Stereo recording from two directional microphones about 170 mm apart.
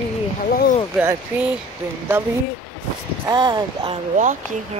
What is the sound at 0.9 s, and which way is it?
Speech, 10° right (ahead or behind).